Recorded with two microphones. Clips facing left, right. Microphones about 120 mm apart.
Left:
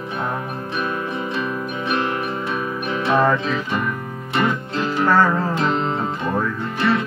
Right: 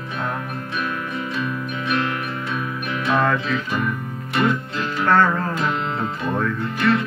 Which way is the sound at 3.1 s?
10° left (ahead or behind).